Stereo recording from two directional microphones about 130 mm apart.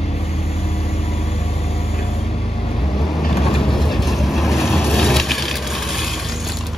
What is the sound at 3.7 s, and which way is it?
Vehicle, centre (ahead or behind).